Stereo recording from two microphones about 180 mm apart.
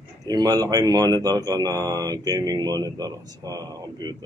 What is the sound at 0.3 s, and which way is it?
Speech, 20° right (ahead or behind).